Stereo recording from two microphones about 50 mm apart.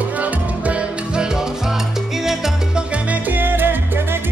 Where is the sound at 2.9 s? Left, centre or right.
Right.